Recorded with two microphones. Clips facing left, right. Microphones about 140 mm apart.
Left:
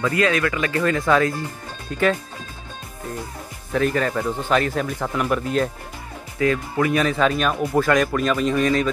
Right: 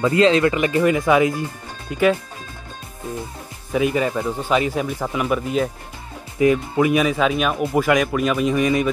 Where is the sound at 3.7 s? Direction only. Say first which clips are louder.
Right 1 dB; 10° right (ahead or behind).